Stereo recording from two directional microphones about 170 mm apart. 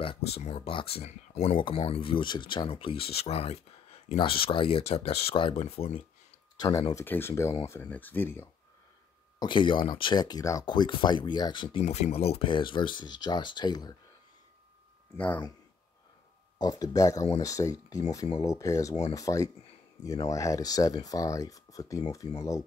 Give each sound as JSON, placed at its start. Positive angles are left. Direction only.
{"t": 0.0, "sound": "speech", "side_deg": 35}
{"t": 6.5, "sound": "speech", "side_deg": 20}
{"t": 9.4, "sound": "speech", "side_deg": 30}
{"t": 15.1, "sound": "speech", "side_deg": 10}
{"t": 16.5, "sound": "speech", "side_deg": 20}